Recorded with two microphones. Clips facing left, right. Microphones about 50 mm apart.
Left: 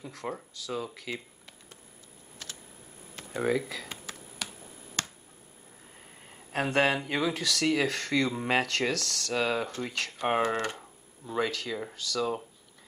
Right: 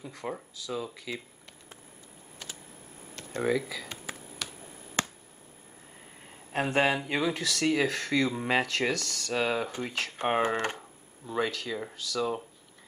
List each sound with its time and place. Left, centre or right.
0.0 s speech: centre
2.4 s a sound: centre
3.2 s speech: centre
4.4 s finger snapping: centre
6.5 s speech: centre
10.4 s speech: right
10.8 s speech: centre